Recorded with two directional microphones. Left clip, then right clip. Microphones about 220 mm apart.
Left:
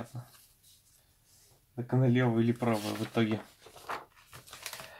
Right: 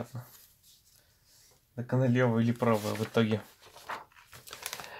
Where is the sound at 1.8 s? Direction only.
45° right (ahead or behind).